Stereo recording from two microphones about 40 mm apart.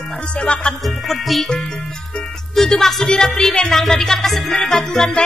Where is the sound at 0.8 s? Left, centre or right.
Centre.